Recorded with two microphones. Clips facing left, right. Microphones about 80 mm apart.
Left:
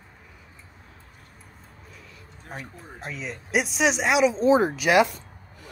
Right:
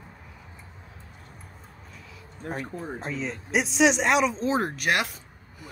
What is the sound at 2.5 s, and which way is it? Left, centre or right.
Speech, right.